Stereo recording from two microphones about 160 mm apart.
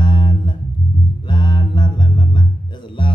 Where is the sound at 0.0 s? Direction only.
30° left (ahead or behind).